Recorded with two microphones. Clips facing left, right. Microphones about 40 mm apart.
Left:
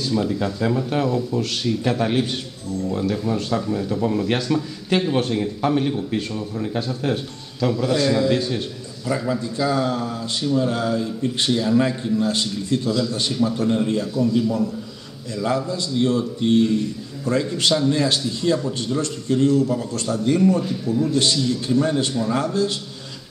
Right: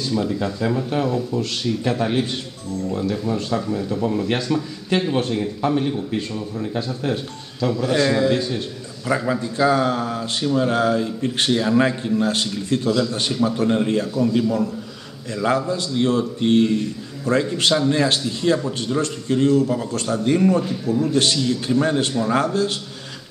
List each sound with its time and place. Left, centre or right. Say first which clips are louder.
0.1 s speech: even; centre
7.9 s a man's voice: right 2 dB; right
8.3 s speech: even; centre
9.0 s a man's voice: right 2 dB; right
12.3 s a man's voice: right 1 dB; right
13.3 s a man's voice: right 1 dB; right